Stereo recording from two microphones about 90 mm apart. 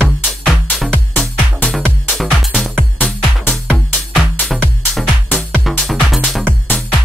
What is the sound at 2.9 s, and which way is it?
Music, 20° left (ahead or behind).